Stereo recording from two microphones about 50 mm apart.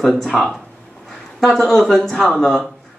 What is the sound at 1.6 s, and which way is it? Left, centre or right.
Speech, centre.